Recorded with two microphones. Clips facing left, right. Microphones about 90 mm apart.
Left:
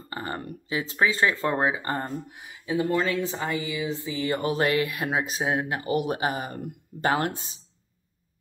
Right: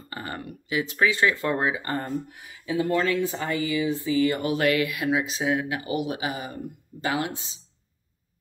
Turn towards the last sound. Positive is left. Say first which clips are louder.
# left 2 dB
turn(degrees=45)  # may be behind; listen again after turning